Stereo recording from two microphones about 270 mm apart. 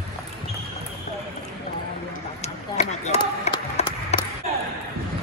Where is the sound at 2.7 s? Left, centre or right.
Left.